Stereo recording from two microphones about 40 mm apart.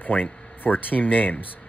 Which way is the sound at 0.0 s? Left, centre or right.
Left.